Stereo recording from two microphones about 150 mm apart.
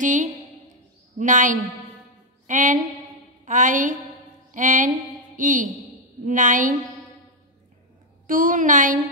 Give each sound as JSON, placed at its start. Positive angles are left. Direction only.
{"t": 0.0, "sound": "a woman's voice", "side_deg": -55}
{"t": 2.4, "sound": "music", "side_deg": -60}
{"t": 3.4, "sound": "a woman's voice", "side_deg": -60}
{"t": 4.5, "sound": "a sound", "side_deg": -60}
{"t": 6.2, "sound": "a woman's voice", "side_deg": -60}
{"t": 8.3, "sound": "a woman's voice", "side_deg": -65}